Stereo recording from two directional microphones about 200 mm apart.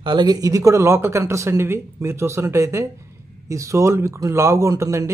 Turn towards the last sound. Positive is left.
turn(degrees=-15)  # may be behind; listen again after turning